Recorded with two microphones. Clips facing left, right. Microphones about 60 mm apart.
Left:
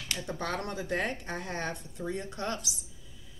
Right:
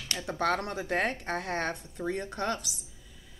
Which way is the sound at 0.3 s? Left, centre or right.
Right.